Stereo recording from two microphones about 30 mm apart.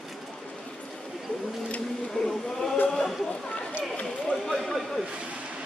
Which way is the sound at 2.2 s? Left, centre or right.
Left.